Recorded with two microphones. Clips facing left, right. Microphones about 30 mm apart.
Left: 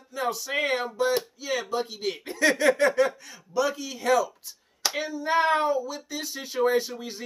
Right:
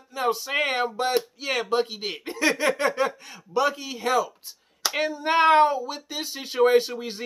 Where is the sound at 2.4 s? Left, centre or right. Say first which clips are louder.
Left 2 dB; centre.